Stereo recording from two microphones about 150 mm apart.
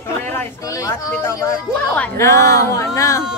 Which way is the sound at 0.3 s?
20° left (ahead or behind).